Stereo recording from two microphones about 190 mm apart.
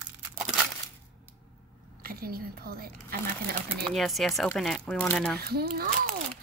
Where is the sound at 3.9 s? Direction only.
Centre (ahead or behind).